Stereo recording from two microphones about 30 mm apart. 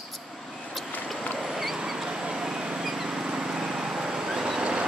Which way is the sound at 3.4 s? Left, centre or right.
Right.